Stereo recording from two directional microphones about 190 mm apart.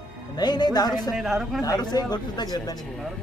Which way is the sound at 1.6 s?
20° left (ahead or behind).